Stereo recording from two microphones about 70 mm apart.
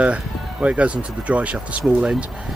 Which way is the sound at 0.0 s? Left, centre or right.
Centre.